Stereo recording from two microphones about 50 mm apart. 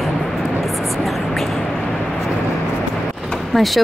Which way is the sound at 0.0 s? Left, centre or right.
Centre.